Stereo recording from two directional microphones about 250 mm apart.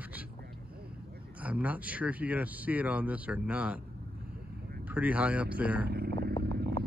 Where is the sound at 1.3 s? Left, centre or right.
Centre.